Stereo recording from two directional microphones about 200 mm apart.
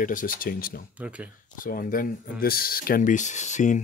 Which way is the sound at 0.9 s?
5° right (ahead or behind).